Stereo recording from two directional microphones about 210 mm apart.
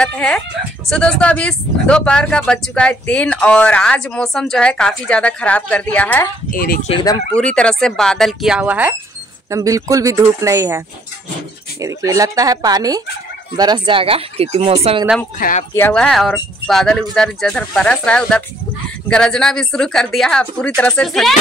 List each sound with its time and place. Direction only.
0.0 s speech: 5° left (ahead or behind)
6.5 s speech: 45° left (ahead or behind)
6.9 s speech: 20° left (ahead or behind)
7.3 s speech: 5° left (ahead or behind); by 10.8 s 15° right (ahead or behind)
11.8 s speech: 15° right (ahead or behind)
15.3 s speech: 40° left (ahead or behind)
15.7 s speech: 5° left (ahead or behind)